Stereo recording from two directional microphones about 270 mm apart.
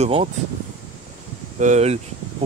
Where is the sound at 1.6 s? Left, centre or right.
Right.